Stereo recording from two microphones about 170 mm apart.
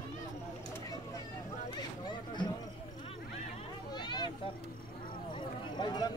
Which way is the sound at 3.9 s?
25° left (ahead or behind).